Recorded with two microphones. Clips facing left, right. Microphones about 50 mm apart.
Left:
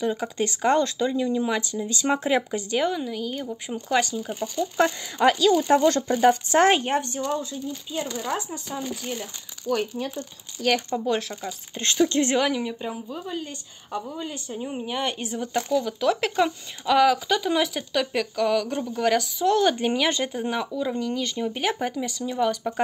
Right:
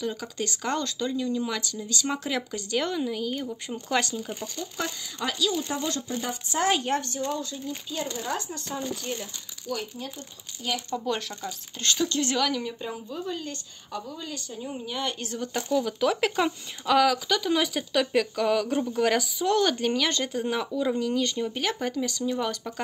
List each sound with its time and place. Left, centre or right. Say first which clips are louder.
0.2 s speech: left 7 dB; left
2.8 s speech: left 1 dB; centre
4.7 s speech: left 11 dB; left
6.7 s speech: left 3 dB; left
7.0 s speech: left 3 dB; left
8.5 s speech: left 1 dB; centre
9.7 s speech: left 7 dB; left
11.1 s speech: left 4 dB; centre
11.7 s speech: left 5 dB; left
15.7 s speech: left 1 dB; centre
19.7 s speech: left 2 dB; centre
20.7 s speech: right 1 dB; centre